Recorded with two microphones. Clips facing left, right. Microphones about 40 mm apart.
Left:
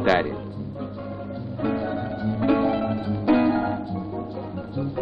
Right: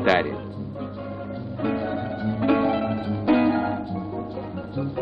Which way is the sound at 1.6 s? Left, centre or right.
Centre.